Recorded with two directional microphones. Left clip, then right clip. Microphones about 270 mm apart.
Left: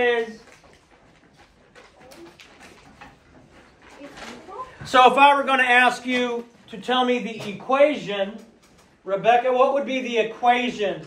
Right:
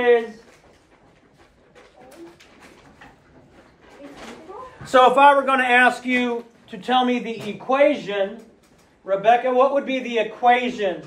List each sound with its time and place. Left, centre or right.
4.9 s a man's voice: centre; by 10.9 s right